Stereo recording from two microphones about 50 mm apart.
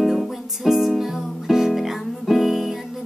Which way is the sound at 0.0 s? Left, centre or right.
Centre.